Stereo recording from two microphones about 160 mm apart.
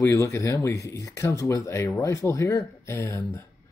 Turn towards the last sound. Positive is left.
turn(degrees=15)  # may be behind; listen again after turning